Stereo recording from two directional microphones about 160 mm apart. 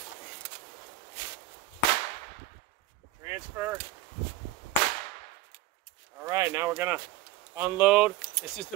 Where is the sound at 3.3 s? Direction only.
10° right (ahead or behind).